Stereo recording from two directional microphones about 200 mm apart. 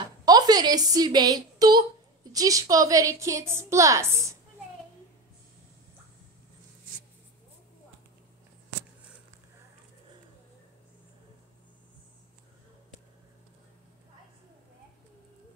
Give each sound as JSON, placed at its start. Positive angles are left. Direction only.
{"t": 0.2, "sound": "a woman's voice", "side_deg": -20}